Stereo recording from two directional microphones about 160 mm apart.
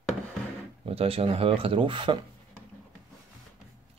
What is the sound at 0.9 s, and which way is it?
Speech, 35° right (ahead or behind).